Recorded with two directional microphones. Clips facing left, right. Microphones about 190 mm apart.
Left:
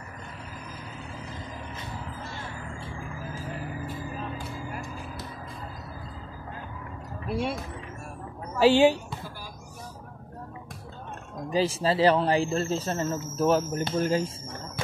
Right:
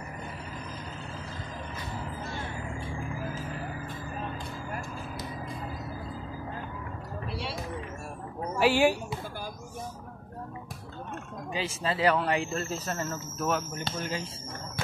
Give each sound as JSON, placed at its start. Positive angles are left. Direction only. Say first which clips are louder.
{"t": 7.2, "sound": "music", "louder": "left 9 dB", "side_deg": 50}
{"t": 8.5, "sound": "speech", "louder": "left 5 dB", "side_deg": 25}
{"t": 11.5, "sound": "a man's voice", "louder": "left 7 dB", "side_deg": 35}
{"t": 13.9, "sound": "speech", "louder": "left 11 dB", "side_deg": 45}